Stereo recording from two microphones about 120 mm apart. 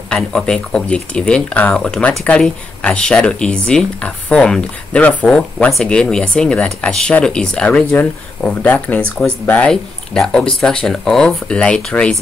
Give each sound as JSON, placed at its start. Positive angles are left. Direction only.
{"t": 0.1, "sound": "speech", "side_deg": 5}